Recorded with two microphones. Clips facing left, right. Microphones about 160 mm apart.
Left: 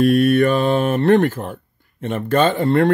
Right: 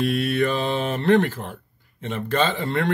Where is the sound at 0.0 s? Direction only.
50° left (ahead or behind).